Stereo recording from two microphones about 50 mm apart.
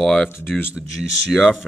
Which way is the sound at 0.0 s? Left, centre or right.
Centre.